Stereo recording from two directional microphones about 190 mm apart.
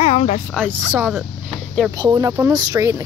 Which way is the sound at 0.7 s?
10° right (ahead or behind).